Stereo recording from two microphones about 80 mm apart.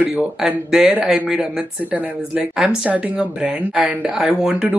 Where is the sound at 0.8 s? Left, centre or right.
Centre.